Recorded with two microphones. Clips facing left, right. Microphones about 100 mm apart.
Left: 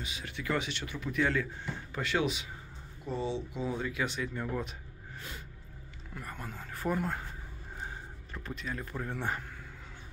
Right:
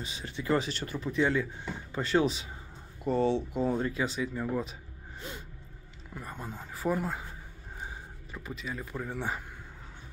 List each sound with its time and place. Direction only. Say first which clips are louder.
0.0 s speech: right 2 dB; 30° right (ahead or behind)
1.2 s speech: right 2 dB; 20° right (ahead or behind)
2.0 s speech: right 4 dB; 35° right (ahead or behind)
3.0 s speech: right 8 dB; 70° right (ahead or behind)
3.8 s speech: right 3 dB; 30° right (ahead or behind)
4.1 s speech: right 3 dB; 5° right (ahead or behind)
6.1 s speech: right 2 dB; 20° right (ahead or behind)
6.7 s speech: right 2 dB; 5° right (ahead or behind)